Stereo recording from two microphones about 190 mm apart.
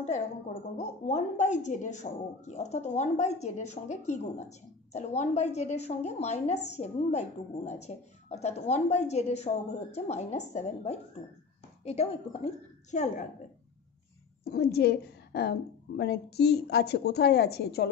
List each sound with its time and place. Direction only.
0.0 s a woman's voice: 35° left (ahead or behind)
14.4 s a woman's voice: 55° left (ahead or behind)